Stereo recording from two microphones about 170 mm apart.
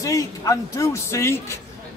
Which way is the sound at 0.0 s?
20° left (ahead or behind).